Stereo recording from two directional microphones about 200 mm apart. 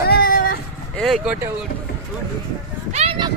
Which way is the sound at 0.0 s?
50° left (ahead or behind).